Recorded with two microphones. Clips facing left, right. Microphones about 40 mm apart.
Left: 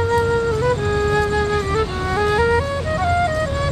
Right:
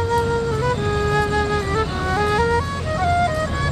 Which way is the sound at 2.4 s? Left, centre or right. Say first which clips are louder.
Left 2 dB; centre.